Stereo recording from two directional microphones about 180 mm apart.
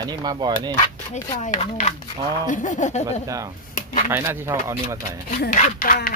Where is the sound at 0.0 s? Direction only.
20° right (ahead or behind).